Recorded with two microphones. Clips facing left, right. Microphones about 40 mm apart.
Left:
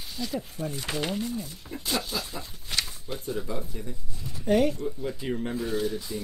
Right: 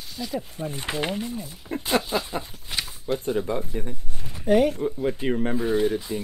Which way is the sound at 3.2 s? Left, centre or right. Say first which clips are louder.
Right 5 dB; right.